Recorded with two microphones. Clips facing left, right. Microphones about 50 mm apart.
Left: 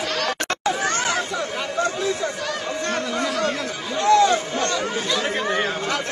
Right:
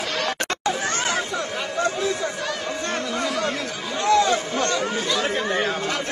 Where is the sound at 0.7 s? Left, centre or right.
Left.